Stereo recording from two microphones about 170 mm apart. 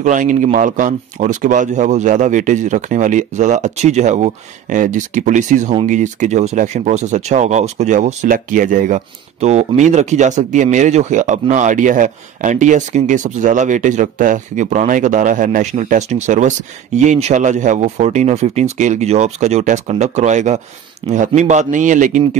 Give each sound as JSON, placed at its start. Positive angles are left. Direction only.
{"t": 0.0, "sound": "speech", "side_deg": -50}
{"t": 21.0, "sound": "speech", "side_deg": -30}
{"t": 21.4, "sound": "speech", "side_deg": -45}